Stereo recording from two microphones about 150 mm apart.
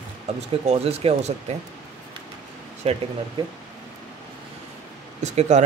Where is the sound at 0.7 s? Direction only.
40° right (ahead or behind).